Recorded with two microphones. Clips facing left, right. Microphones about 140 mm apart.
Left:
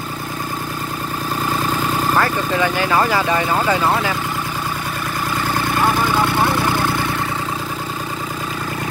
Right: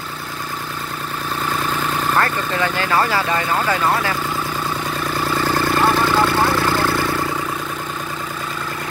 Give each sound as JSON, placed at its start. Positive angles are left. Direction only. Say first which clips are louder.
{"t": 2.1, "sound": "speech", "louder": "left 2 dB", "side_deg": 15}
{"t": 5.8, "sound": "vehicle", "louder": "even", "side_deg": 15}